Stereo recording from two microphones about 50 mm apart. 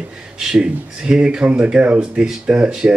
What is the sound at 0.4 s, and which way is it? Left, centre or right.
Speech, centre.